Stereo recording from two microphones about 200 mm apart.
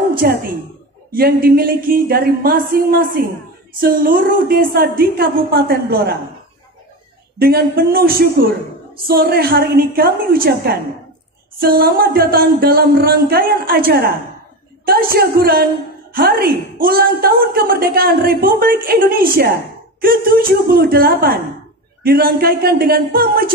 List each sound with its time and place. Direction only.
0.2 s a woman's voice: 50° right (ahead or behind)
7.3 s a woman's voice: 50° right (ahead or behind)